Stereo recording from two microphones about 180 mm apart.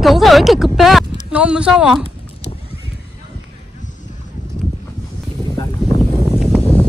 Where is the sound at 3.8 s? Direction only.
45° left (ahead or behind).